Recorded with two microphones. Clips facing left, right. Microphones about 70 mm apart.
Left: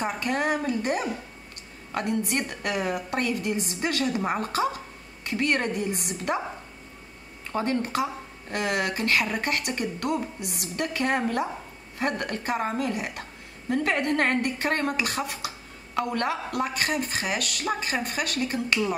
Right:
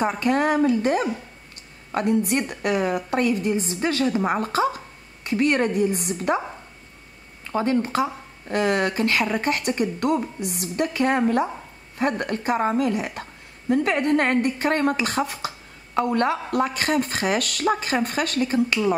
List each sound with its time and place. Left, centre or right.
0.0 s a woman's voice: right
7.5 s a woman's voice: right
18.4 s a woman's voice: right